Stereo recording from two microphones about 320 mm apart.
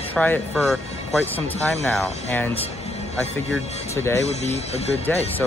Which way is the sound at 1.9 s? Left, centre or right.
Centre.